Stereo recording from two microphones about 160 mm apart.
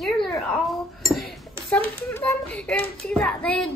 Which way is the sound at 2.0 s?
15° left (ahead or behind).